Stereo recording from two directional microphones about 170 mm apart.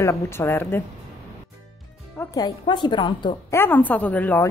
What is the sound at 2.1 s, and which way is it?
Speech, 20° left (ahead or behind).